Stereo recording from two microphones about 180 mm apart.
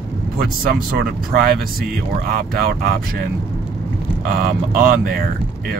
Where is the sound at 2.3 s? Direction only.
55° right (ahead or behind).